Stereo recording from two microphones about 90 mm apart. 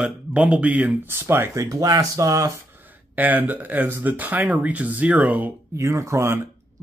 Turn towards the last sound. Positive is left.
turn(degrees=-30)  # may be behind; listen again after turning